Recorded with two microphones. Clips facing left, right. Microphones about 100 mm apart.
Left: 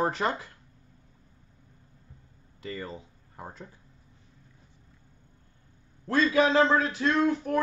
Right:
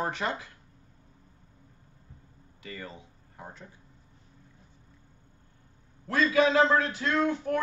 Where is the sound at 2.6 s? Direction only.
30° left (ahead or behind).